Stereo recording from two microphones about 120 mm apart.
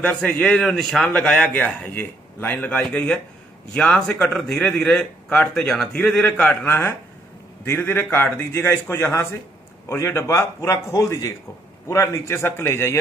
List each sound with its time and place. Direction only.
0.0 s a man's voice: 10° left (ahead or behind)